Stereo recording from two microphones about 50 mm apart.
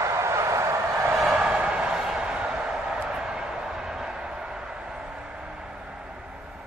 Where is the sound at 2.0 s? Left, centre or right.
Centre.